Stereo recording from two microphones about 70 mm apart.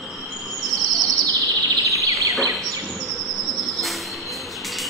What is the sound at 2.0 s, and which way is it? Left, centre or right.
Bird vocalization, right.